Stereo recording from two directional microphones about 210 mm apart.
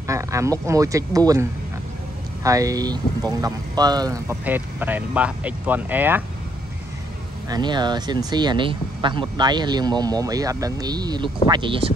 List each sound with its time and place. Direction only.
0.0 s speech: 15° right (ahead or behind)
7.4 s speech: 20° right (ahead or behind)